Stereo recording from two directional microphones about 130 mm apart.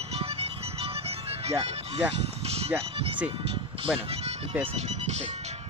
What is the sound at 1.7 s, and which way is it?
Speech, 50° right (ahead or behind).